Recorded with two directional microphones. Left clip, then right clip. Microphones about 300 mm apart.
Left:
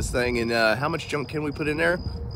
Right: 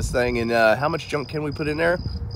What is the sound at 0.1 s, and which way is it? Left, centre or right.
Speech, centre.